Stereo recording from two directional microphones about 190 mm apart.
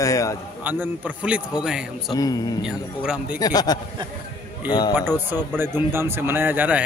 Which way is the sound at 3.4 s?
20° left (ahead or behind).